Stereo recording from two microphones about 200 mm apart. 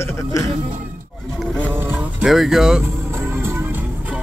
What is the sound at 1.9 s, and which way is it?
Music, 5° right (ahead or behind).